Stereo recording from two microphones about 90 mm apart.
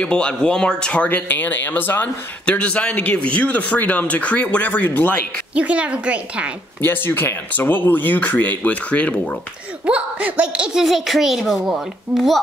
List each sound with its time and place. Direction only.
0.0 s speech: 10° left (ahead or behind)
5.5 s a woman's voice: 15° right (ahead or behind)
6.8 s speech: 25° left (ahead or behind)
9.8 s a child's voice: 15° right (ahead or behind)